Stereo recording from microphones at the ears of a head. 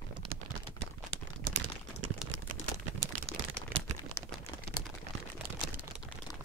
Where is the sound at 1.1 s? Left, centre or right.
Right.